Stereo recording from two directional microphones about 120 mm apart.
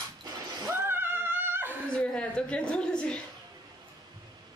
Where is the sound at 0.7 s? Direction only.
20° right (ahead or behind).